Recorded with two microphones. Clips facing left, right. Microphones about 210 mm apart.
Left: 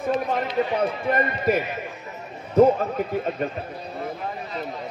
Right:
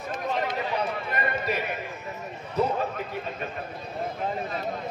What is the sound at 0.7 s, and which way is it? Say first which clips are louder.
Speech: left 7 dB; 50° left (ahead or behind).